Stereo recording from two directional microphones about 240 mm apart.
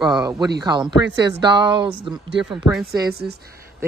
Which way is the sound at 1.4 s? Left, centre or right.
Centre.